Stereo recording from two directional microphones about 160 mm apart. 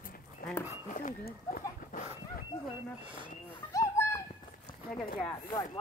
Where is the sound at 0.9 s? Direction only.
55° left (ahead or behind).